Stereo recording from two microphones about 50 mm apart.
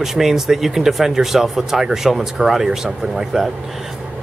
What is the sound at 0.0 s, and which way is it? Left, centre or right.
Speech, centre.